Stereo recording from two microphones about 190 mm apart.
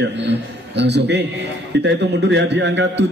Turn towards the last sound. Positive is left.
turn(degrees=-70)  # may be behind; listen again after turning